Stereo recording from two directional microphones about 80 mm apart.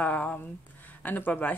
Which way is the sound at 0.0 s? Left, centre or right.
Centre.